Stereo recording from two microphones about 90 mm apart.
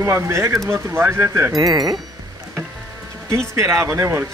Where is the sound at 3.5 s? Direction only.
30° right (ahead or behind).